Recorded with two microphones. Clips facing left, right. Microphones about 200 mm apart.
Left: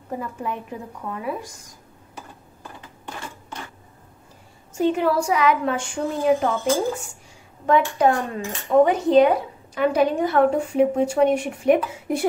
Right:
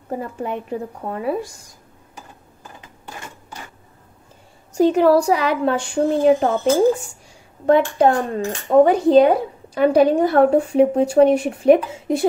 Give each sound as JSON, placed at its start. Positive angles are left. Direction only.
{"t": 0.1, "sound": "speech", "side_deg": -40}
{"t": 4.7, "sound": "speech", "side_deg": -40}
{"t": 7.6, "sound": "speech", "side_deg": -30}